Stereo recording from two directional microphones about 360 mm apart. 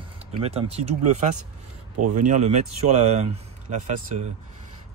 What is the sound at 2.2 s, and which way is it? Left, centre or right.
Speech, centre.